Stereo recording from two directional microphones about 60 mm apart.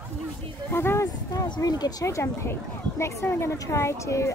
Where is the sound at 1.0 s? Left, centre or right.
Left.